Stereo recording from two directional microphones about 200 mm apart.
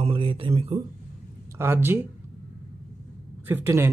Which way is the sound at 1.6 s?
10° right (ahead or behind).